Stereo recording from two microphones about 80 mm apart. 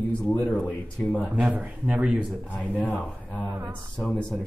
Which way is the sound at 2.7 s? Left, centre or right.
Left.